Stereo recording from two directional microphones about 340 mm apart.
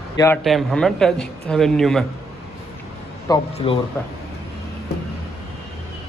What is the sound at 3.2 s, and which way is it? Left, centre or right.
Speech, centre.